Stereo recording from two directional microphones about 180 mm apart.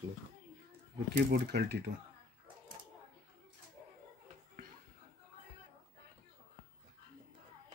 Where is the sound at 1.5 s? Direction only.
70° right (ahead or behind).